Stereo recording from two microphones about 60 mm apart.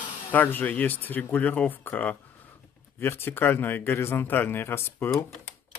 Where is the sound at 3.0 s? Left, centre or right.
Left.